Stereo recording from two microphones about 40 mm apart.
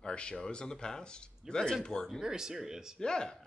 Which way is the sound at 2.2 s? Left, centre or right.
Centre.